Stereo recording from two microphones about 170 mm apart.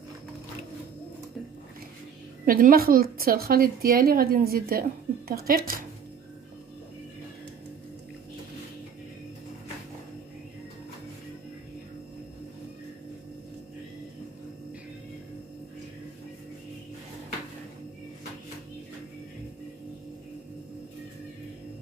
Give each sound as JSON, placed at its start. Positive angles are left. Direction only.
{"t": 2.4, "sound": "a woman's voice", "side_deg": -55}